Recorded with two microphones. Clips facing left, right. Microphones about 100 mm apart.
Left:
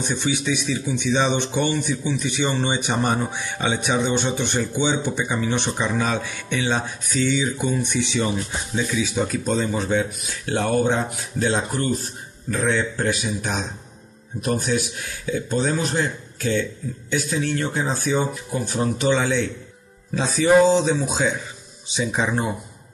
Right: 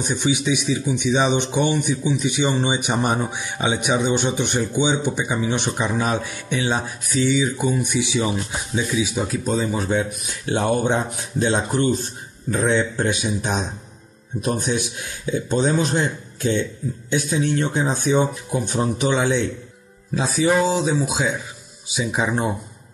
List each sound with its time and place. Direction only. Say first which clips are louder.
0.0 s speech: right 2 dB; 15° right (ahead or behind)
20.2 s speech: left 3 dB; 5° right (ahead or behind)